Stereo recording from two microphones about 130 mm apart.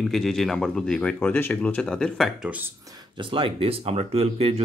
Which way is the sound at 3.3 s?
45° right (ahead or behind).